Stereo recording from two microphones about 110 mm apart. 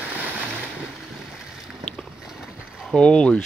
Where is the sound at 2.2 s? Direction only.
5° right (ahead or behind).